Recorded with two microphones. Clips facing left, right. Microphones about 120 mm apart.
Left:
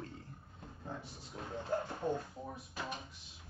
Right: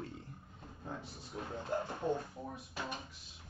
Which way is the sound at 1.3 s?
30° right (ahead or behind).